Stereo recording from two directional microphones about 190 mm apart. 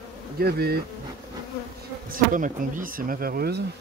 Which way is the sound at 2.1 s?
45° right (ahead or behind).